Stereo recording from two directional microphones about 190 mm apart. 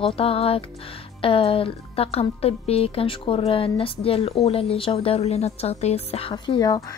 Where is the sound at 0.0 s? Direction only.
30° left (ahead or behind).